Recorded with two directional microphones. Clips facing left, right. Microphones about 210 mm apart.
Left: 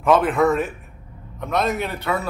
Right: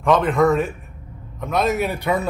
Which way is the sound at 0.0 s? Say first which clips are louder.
Even; 5° left (ahead or behind).